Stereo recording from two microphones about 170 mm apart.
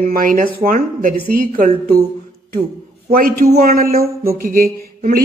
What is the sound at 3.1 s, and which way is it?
Speech, 60° right (ahead or behind).